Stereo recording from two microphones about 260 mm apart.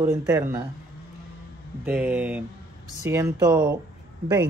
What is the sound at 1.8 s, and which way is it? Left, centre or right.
Speech, centre.